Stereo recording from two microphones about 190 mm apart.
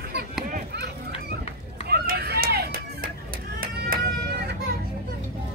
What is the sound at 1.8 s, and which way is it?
Run, 55° right (ahead or behind).